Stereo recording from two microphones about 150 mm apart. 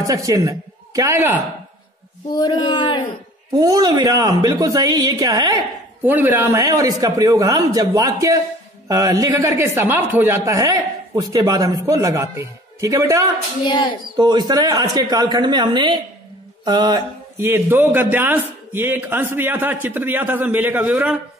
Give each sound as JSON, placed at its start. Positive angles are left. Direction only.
{"t": 0.0, "sound": "a man's voice", "side_deg": -25}
{"t": 2.3, "sound": "speech", "side_deg": 30}
{"t": 3.5, "sound": "speech", "side_deg": -30}
{"t": 6.0, "sound": "a man's voice", "side_deg": -10}
{"t": 6.5, "sound": "speech", "side_deg": -25}
{"t": 17.4, "sound": "a man's voice", "side_deg": -15}